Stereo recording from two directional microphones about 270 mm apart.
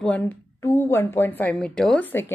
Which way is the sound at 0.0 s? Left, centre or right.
Centre.